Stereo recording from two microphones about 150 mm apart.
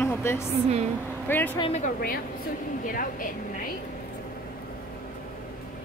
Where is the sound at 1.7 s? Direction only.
55° left (ahead or behind).